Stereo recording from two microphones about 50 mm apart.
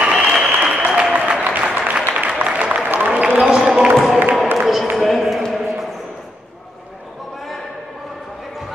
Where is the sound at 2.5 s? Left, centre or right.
Right.